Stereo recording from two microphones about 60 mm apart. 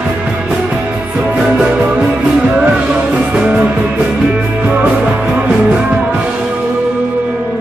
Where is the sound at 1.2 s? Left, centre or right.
Centre.